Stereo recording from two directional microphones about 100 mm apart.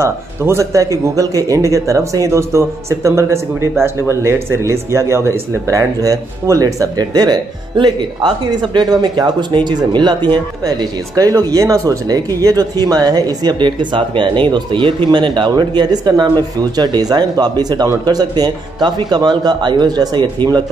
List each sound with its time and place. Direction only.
0.0 s speech: 25° right (ahead or behind); by 20.2 s 45° right (ahead or behind)